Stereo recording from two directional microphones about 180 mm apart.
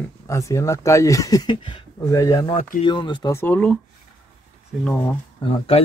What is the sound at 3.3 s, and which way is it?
Speech, 10° left (ahead or behind).